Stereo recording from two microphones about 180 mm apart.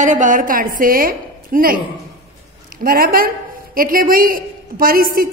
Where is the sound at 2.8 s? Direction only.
55° right (ahead or behind).